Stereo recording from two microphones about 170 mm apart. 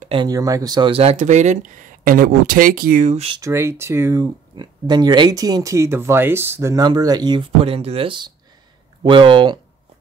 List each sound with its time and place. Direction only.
0.0 s speech: 30° right (ahead or behind)
2.0 s speech: 55° right (ahead or behind)
3.1 s speech: 40° right (ahead or behind)
3.3 s speech: 15° right (ahead or behind)